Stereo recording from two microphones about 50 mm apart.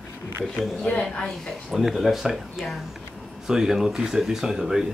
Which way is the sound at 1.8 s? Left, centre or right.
Centre.